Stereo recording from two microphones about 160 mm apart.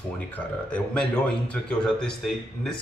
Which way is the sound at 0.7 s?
10° left (ahead or behind).